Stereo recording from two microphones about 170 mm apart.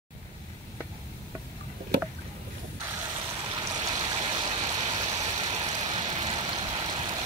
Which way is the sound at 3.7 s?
25° right (ahead or behind).